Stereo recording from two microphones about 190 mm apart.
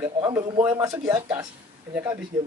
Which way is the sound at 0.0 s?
15° right (ahead or behind).